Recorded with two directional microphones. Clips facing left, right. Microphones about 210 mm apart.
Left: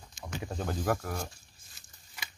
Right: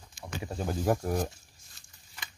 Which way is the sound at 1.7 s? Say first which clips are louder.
Left 1 dB; 5° left (ahead or behind).